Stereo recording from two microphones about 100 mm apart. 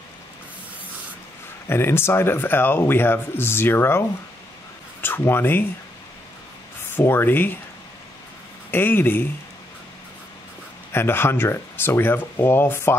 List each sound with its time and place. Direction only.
1.7 s speech: 25° left (ahead or behind)
5.0 s speech: 20° left (ahead or behind)
6.9 s speech: 20° left (ahead or behind)
8.7 s speech: 20° left (ahead or behind)
10.9 s speech: 25° left (ahead or behind)